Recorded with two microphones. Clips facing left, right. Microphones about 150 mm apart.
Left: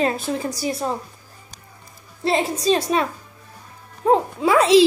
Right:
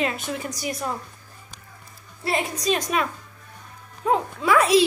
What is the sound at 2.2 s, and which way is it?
A woman's voice, 30° left (ahead or behind).